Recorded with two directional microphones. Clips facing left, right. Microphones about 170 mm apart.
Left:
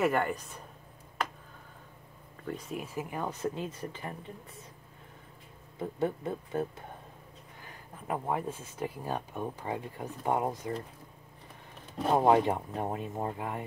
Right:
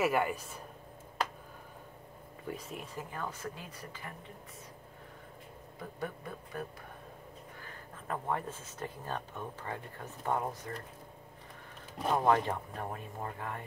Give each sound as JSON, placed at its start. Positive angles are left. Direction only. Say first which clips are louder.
{"t": 0.0, "sound": "speech", "louder": "left 2 dB", "side_deg": -5}
{"t": 2.5, "sound": "speech", "louder": "left 6 dB", "side_deg": 0}
{"t": 5.8, "sound": "speech", "louder": "left 9 dB", "side_deg": 25}
{"t": 7.6, "sound": "speech", "louder": "left 5 dB", "side_deg": 15}
{"t": 12.3, "sound": "speech", "louder": "left 4 dB", "side_deg": 15}